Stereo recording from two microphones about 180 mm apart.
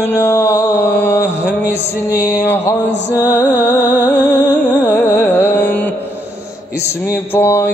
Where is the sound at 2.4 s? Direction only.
15° left (ahead or behind).